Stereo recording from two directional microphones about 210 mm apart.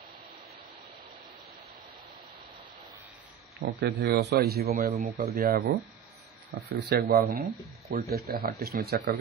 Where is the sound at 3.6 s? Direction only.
50° right (ahead or behind).